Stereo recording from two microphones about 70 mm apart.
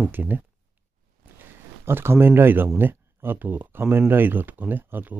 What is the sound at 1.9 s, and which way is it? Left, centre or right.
Speech, right.